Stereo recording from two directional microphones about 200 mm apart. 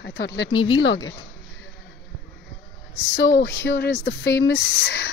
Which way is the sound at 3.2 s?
50° left (ahead or behind).